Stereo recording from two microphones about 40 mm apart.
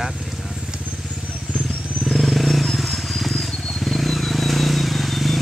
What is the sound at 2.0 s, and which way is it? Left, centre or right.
Wild animals, centre.